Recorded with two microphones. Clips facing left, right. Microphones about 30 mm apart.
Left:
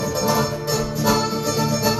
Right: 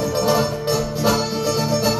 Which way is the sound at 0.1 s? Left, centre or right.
Right.